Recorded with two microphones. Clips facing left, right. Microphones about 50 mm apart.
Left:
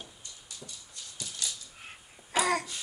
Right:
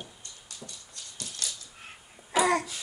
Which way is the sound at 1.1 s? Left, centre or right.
Right.